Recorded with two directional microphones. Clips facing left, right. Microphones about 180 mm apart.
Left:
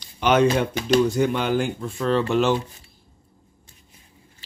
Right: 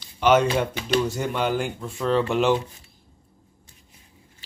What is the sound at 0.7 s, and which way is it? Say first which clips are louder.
Speech: left 5 dB; 45° left (ahead or behind).